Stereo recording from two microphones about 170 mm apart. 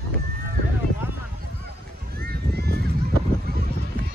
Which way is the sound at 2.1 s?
70° right (ahead or behind).